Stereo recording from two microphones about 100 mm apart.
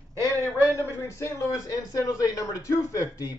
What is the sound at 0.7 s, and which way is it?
A man's voice, 30° left (ahead or behind).